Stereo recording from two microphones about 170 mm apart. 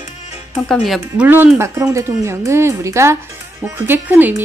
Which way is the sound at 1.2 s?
10° right (ahead or behind).